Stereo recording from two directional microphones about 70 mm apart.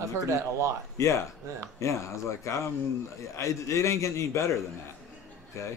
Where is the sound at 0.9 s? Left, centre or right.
Left.